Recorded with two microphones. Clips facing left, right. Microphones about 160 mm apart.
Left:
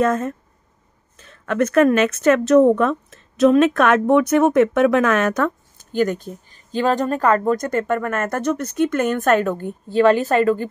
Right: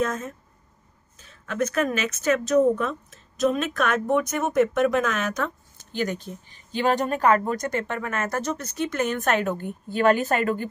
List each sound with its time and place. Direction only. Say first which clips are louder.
0.0 s speech: left 8 dB; 55° left (ahead or behind); by 10.7 s 35° left (ahead or behind)